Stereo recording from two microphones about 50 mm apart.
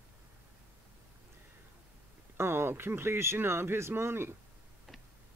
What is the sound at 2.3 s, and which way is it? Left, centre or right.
Speech, right.